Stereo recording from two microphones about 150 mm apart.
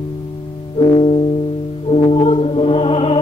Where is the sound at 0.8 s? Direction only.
40° left (ahead or behind).